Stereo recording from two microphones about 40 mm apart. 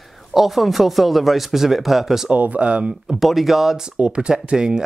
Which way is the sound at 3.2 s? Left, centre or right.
Centre.